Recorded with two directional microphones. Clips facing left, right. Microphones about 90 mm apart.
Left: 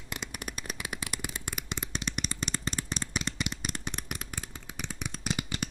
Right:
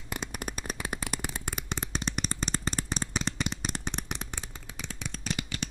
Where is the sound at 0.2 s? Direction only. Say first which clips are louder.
Right 3 dB; 35° right (ahead or behind).